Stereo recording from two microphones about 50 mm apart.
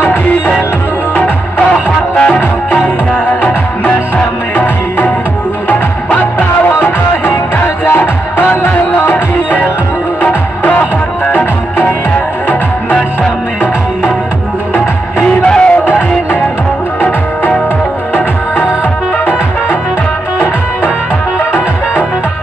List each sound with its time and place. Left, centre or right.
4.6 s music: left
7.8 s music: left
10.2 s music: left
15.2 s music: centre